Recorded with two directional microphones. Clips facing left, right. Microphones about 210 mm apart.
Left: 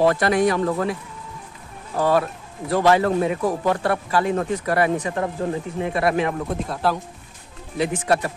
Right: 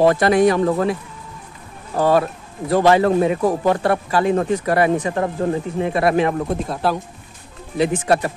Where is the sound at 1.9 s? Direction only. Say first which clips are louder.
Right 3 dB; 35° right (ahead or behind).